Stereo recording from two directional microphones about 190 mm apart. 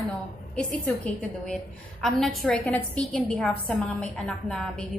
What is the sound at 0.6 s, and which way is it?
A woman's voice, 5° left (ahead or behind).